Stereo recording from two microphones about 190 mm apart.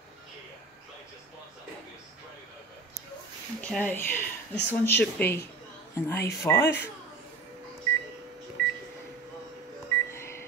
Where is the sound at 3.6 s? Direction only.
5° left (ahead or behind).